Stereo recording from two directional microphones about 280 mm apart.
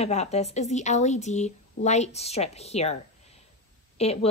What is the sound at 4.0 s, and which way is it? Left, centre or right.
Speech, left.